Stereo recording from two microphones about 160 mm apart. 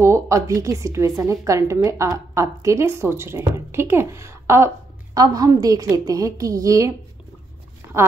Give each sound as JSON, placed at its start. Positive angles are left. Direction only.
{"t": 0.0, "sound": "a woman's voice", "side_deg": -20}